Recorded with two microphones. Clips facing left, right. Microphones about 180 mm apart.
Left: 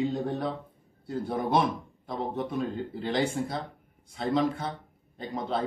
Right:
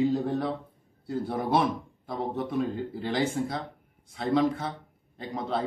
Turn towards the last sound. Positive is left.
turn(degrees=0)  # may be behind; listen again after turning